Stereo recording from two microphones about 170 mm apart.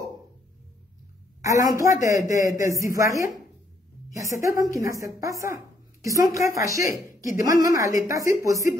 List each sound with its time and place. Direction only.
1.4 s a man's voice: 20° right (ahead or behind)